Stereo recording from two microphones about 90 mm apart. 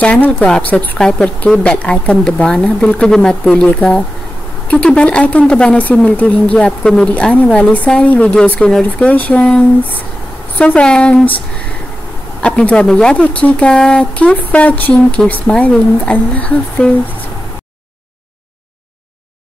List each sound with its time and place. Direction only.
0.0 s speech: 15° left (ahead or behind)
12.4 s speech: 10° left (ahead or behind)